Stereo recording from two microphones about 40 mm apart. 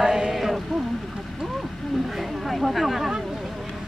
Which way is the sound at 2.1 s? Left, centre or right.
Centre.